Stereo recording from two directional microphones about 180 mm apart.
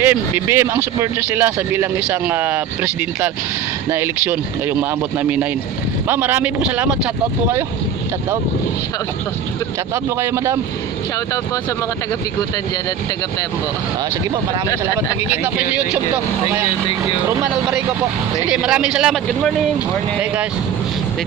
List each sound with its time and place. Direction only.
0.0 s speech: 15° right (ahead or behind)
10.3 s speech: 15° right (ahead or behind)
15.4 s speech: 10° right (ahead or behind)
18.4 s speech: 5° right (ahead or behind)